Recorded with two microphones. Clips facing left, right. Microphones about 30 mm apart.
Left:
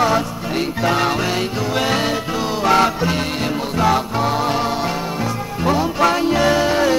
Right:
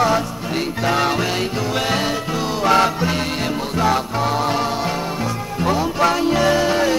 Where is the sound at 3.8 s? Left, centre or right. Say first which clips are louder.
Left 2 dB; centre.